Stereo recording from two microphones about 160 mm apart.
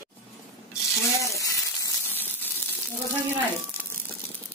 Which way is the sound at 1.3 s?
20° left (ahead or behind).